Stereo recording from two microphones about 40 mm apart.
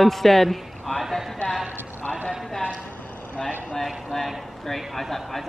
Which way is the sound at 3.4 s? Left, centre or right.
Centre.